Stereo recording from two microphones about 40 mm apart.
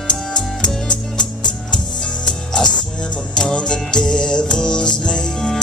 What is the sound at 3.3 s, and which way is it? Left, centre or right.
Music, centre.